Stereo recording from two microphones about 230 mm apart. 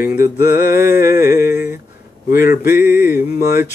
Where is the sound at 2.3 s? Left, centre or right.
Left.